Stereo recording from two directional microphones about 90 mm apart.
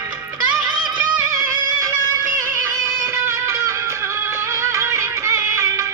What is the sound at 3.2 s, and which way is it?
Music, 30° right (ahead or behind).